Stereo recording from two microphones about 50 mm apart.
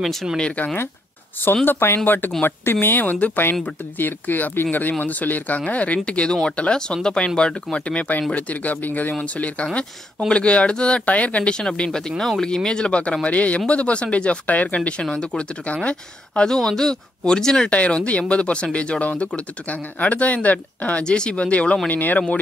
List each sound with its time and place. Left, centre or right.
0.0 s speech: centre
0.4 s speech: left
1.4 s speech: left; by 12.0 s centre
12.2 s speech: centre
12.4 s speech: centre; by 14.8 s left
15.0 s speech: left
16.4 s speech: centre
17.6 s speech: left
21.8 s speech: left